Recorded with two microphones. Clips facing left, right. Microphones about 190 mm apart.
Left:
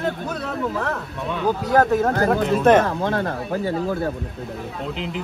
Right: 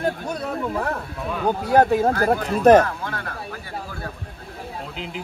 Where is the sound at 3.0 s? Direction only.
25° left (ahead or behind).